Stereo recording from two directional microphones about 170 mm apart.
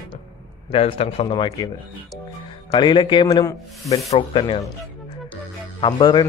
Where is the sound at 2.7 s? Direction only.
25° left (ahead or behind).